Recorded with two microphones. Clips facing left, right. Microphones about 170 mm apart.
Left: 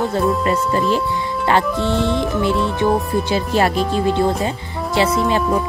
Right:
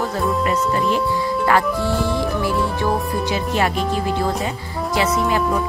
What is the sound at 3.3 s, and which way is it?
Speech, 35° left (ahead or behind).